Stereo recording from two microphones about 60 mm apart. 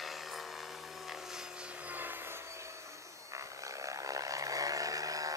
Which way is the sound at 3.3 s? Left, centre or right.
Right.